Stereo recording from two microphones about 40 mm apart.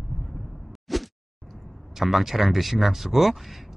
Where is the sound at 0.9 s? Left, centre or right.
Centre.